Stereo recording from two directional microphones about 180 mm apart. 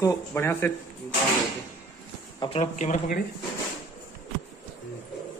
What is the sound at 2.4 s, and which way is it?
Speech, 40° left (ahead or behind).